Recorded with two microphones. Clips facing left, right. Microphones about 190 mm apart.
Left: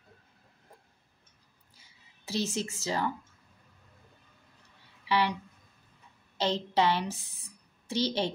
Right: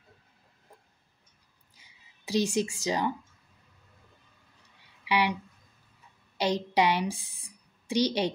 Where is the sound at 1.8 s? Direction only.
15° right (ahead or behind).